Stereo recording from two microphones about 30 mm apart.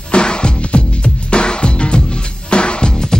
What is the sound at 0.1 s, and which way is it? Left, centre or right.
Music, left.